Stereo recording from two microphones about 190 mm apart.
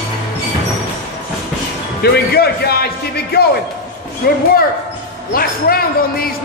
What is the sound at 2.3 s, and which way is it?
A man's voice, 55° left (ahead or behind).